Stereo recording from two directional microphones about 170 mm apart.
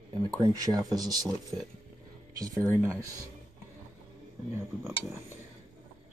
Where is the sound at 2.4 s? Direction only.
20° right (ahead or behind).